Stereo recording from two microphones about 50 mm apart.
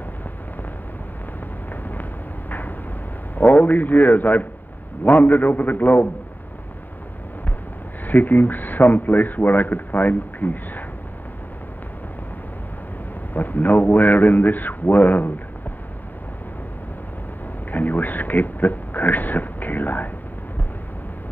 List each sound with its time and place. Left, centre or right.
1.7 s a sound: left
3.3 s speech: left
8.0 s speech: left
13.3 s speech: left
17.6 s speech: left